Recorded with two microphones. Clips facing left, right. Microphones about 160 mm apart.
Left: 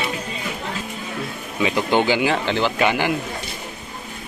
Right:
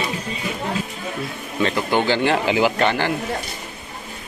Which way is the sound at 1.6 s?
15° left (ahead or behind).